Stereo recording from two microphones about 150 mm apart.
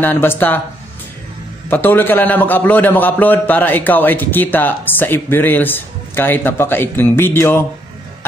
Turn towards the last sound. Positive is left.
turn(degrees=15)  # may be behind; listen again after turning